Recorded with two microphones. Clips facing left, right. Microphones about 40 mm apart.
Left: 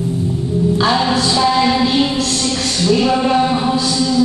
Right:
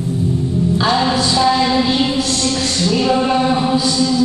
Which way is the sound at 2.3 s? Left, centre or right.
Centre.